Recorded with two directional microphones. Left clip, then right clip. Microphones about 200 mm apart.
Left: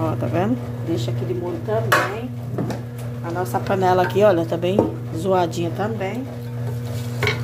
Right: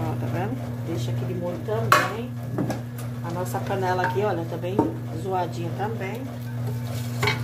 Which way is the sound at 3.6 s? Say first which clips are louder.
Left 7 dB; 55° left (ahead or behind).